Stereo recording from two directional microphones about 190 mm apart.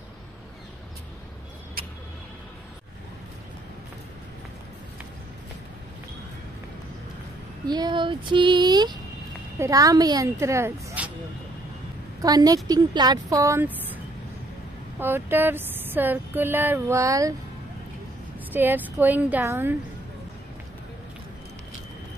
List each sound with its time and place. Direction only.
7.6 s speech: 20° right (ahead or behind)
12.2 s speech: 20° right (ahead or behind)
18.5 s speech: 10° right (ahead or behind)